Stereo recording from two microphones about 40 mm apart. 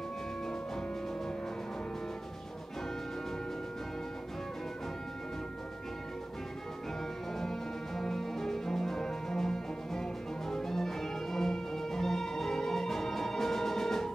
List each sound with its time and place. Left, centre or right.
7.3 s music: centre